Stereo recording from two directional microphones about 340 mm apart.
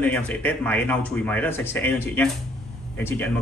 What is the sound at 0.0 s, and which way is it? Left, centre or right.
A man's voice, centre.